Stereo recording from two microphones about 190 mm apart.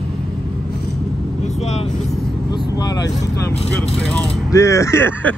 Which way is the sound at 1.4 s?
35° left (ahead or behind).